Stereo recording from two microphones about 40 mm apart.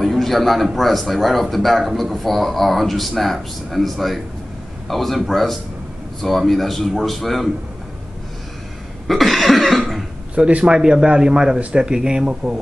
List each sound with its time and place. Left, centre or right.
0.0 s a sound: centre
0.7 s a man's voice: centre
9.0 s cough: centre
10.3 s a man's voice: right